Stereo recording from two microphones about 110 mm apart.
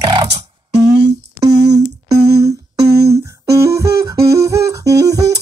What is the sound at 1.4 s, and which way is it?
Humming, 35° right (ahead or behind).